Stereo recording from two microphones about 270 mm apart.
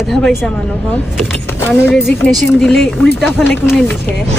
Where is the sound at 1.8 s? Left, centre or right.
Centre.